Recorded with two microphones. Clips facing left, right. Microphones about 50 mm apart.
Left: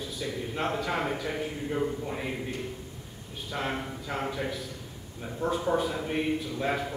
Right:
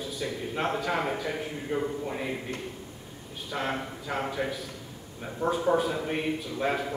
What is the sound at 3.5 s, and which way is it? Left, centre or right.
A man's voice, centre.